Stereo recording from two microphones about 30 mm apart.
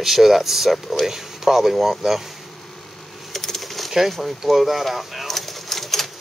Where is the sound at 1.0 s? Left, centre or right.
Centre.